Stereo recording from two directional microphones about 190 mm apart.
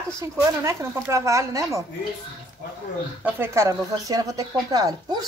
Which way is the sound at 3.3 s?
15° right (ahead or behind).